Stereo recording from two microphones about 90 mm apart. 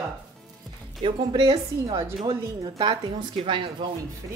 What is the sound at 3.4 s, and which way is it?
Speech, 65° right (ahead or behind).